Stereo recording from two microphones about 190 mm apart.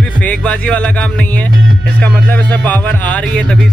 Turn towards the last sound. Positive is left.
turn(degrees=5)  # may be behind; listen again after turning